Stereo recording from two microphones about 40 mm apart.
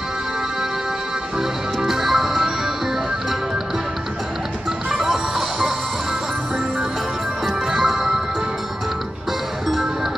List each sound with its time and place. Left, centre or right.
1.4 s music: centre
4.9 s music: centre
7.4 s music: centre